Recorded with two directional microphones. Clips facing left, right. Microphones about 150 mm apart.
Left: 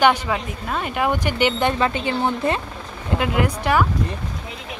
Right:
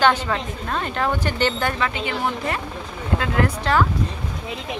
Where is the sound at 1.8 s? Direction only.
30° left (ahead or behind).